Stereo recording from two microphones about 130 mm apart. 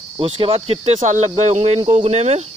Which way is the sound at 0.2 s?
50° right (ahead or behind).